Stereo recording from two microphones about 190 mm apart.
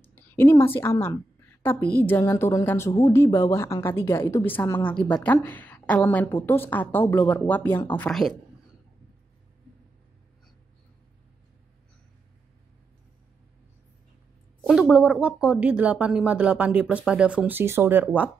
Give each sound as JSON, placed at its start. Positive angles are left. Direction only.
{"t": 0.0, "sound": "a woman's voice", "side_deg": 10}
{"t": 14.7, "sound": "speech", "side_deg": -5}